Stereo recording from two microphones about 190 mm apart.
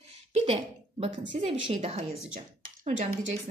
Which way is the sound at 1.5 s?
25° right (ahead or behind).